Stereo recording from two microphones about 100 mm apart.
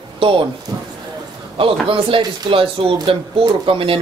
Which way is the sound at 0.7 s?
40° right (ahead or behind).